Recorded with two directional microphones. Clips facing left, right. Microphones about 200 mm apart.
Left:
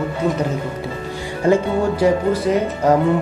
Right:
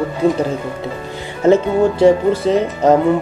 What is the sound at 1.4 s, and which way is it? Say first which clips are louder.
Speech: right 4 dB; 25° right (ahead or behind).